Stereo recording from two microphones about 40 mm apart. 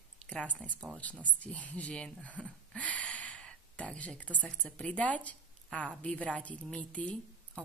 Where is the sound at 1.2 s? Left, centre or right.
Left.